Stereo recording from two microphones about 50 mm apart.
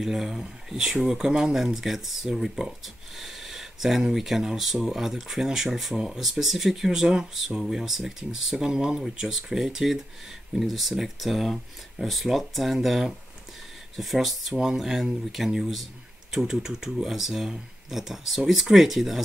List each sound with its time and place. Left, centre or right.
0.0 s speech: centre